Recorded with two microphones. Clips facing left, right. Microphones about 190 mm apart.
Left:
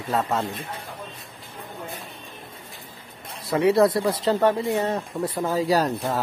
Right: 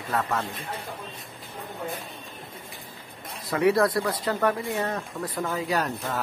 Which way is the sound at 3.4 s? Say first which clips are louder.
Left 3 dB; 25° left (ahead or behind).